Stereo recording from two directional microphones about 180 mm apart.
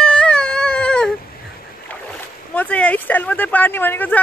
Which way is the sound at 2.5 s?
10° left (ahead or behind).